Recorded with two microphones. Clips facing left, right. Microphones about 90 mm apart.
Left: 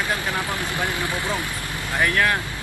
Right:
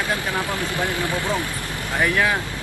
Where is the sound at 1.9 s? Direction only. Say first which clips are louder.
Right 1 dB; 10° right (ahead or behind).